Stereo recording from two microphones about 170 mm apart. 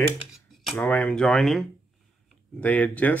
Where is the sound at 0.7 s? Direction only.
10° left (ahead or behind).